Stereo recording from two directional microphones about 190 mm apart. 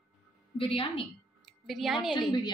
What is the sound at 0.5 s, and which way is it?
Speech, 30° left (ahead or behind).